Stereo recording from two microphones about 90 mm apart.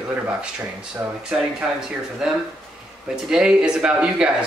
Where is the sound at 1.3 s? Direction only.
10° right (ahead or behind).